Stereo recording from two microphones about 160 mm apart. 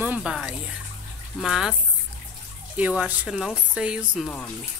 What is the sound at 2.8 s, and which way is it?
Speech, 10° right (ahead or behind).